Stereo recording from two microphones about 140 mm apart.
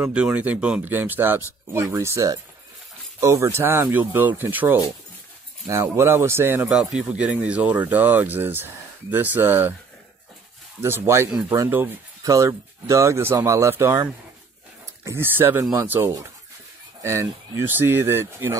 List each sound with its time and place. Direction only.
0.0 s speech: 10° right (ahead or behind)
6.7 s speech: 5° right (ahead or behind)
10.8 s speech: 15° right (ahead or behind)
15.0 s speech: 15° right (ahead or behind)